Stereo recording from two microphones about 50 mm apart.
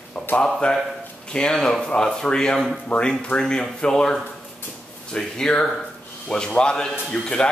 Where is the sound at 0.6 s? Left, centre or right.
Left.